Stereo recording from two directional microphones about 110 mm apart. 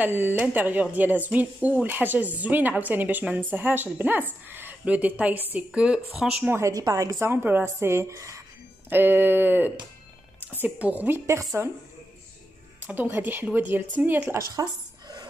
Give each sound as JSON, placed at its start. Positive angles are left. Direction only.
{"t": 0.0, "sound": "speech", "side_deg": -15}
{"t": 6.7, "sound": "speech", "side_deg": -35}
{"t": 12.8, "sound": "speech", "side_deg": -15}
{"t": 14.5, "sound": "a sound", "side_deg": -40}